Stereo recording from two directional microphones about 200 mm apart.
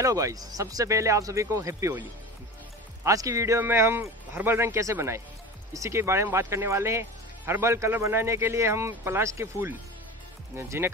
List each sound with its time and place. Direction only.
0.0 s speech: 15° right (ahead or behind)